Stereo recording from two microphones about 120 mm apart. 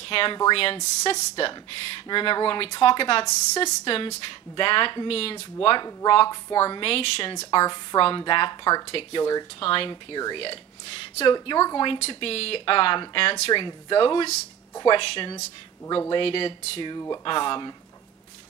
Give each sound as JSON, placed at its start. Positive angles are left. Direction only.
{"t": 0.0, "sound": "speech", "side_deg": 50}
{"t": 8.8, "sound": "speech", "side_deg": 50}
{"t": 9.2, "sound": "speech", "side_deg": 30}
{"t": 9.6, "sound": "speech", "side_deg": 50}